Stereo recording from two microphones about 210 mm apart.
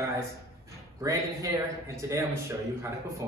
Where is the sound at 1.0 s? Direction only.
15° right (ahead or behind).